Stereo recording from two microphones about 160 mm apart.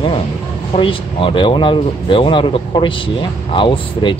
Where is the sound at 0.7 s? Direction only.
30° left (ahead or behind).